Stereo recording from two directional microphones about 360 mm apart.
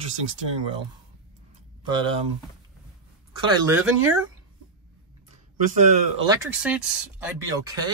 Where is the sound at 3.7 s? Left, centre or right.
Centre.